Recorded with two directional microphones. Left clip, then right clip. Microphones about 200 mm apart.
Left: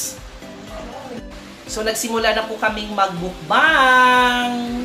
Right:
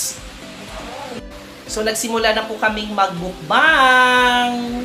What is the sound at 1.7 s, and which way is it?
A woman's voice, 15° right (ahead or behind).